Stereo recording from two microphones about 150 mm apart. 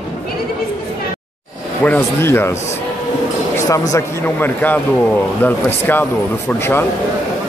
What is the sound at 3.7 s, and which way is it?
Speech, 20° left (ahead or behind).